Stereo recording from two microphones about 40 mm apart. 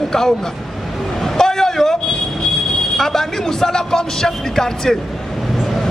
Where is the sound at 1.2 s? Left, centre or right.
Centre.